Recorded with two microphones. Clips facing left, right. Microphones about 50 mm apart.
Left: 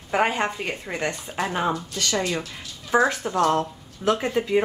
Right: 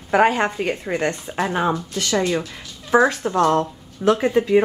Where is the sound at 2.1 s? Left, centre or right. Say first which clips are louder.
Right 6 dB; centre.